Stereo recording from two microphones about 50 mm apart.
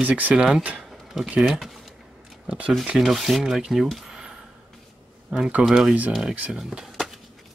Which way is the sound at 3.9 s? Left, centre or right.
Centre.